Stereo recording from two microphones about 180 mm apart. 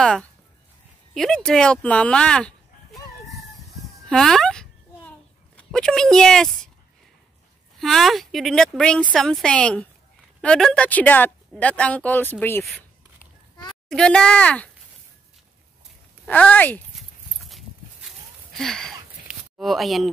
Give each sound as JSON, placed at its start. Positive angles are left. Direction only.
{"t": 0.0, "sound": "speech", "side_deg": 5}
{"t": 4.1, "sound": "a sound", "side_deg": 0}
{"t": 5.6, "sound": "speech", "side_deg": 5}
{"t": 7.8, "sound": "speech", "side_deg": 0}
{"t": 13.8, "sound": "speech", "side_deg": 5}
{"t": 16.3, "sound": "speech", "side_deg": 10}
{"t": 17.5, "sound": "a sound", "side_deg": 0}